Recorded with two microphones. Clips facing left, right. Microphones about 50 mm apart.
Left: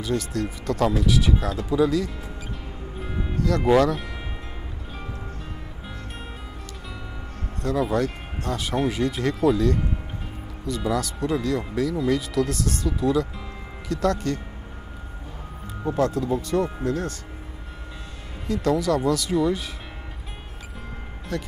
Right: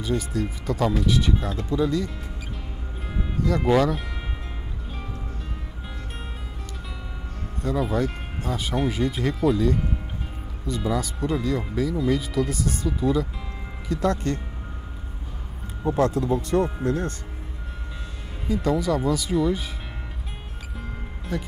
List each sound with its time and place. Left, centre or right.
0.0 s speech: centre
3.0 s music: centre
3.6 s speech: centre
7.6 s speech: centre
16.3 s speech: right
16.6 s speech: centre
18.5 s speech: centre
21.3 s speech: centre